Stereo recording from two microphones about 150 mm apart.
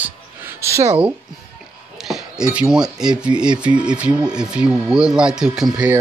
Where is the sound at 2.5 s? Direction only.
5° right (ahead or behind).